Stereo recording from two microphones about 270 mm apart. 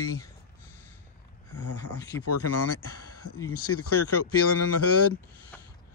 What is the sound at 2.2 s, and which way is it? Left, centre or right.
Speech, left.